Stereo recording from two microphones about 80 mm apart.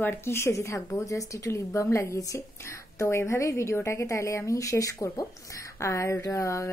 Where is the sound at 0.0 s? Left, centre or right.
Left.